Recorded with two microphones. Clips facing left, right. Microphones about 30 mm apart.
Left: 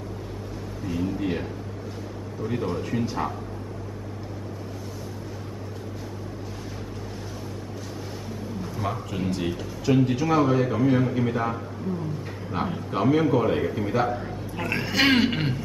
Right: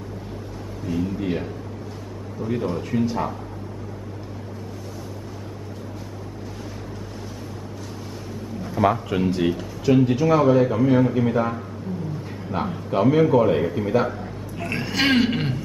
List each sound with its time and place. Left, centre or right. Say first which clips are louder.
0.8 s a man's voice: right 2 dB; centre
8.8 s a man's voice: right 11 dB; right
9.2 s a man's voice: right 3 dB; centre